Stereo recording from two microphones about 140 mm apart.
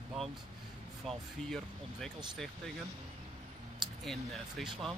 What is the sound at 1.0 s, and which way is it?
Speech, centre (ahead or behind).